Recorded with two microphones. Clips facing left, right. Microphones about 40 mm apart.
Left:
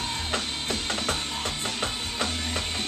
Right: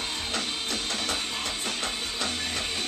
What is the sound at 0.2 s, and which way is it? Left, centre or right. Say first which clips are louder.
Music: left 1 dB; left.